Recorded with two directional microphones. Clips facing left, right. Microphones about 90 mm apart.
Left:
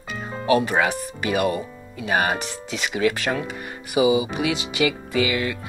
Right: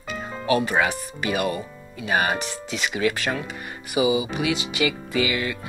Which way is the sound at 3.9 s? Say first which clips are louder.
Left 3 dB; 90° left.